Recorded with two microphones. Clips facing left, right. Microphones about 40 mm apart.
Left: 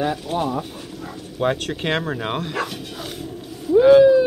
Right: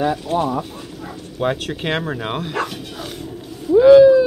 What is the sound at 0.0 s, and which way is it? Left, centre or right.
Speech, centre.